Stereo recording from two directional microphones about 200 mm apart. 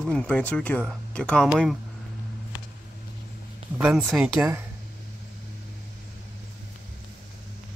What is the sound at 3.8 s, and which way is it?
Speech, centre (ahead or behind).